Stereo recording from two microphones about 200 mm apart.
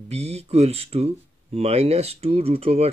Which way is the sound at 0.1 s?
30° right (ahead or behind).